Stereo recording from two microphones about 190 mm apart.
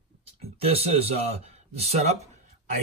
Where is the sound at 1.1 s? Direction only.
35° right (ahead or behind).